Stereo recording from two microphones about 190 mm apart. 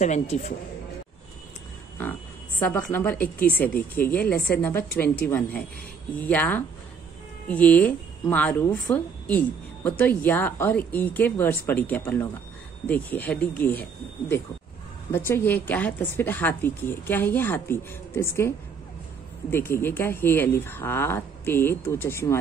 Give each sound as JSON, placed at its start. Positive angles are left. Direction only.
{"t": 0.0, "sound": "a man's voice", "side_deg": 40}
{"t": 2.6, "sound": "a woman's voice", "side_deg": 10}
{"t": 15.0, "sound": "a woman's voice", "side_deg": 10}
{"t": 19.5, "sound": "a woman's voice", "side_deg": 10}